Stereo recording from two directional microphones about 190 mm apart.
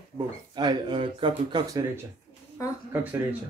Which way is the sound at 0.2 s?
25° right (ahead or behind).